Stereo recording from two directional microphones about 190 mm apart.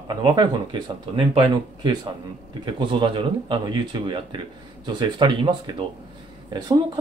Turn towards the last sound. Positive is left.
turn(degrees=-20)  # may be behind; listen again after turning